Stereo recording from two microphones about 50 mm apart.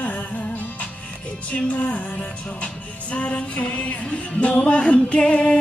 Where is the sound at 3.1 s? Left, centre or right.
Left.